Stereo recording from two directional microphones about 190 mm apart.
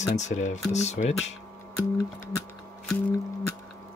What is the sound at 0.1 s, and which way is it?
Speech, 40° left (ahead or behind).